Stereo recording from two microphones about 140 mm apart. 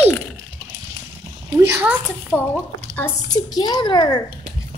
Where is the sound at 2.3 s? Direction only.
10° right (ahead or behind).